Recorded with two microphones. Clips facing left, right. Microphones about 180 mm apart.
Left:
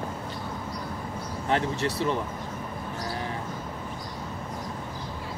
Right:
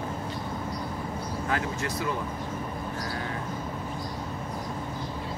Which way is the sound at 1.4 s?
30° left (ahead or behind).